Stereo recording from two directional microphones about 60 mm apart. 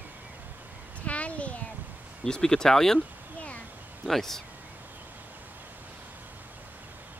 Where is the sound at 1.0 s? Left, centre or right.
Left.